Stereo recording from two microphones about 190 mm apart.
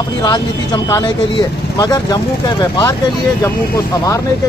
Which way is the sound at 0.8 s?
20° left (ahead or behind).